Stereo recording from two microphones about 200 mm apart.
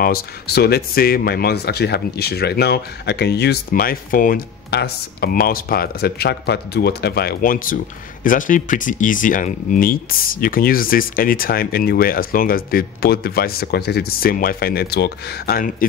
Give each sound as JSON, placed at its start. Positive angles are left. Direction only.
{"t": 0.0, "sound": "speech", "side_deg": 50}